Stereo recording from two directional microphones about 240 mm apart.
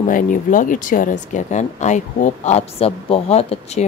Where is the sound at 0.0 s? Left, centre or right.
Left.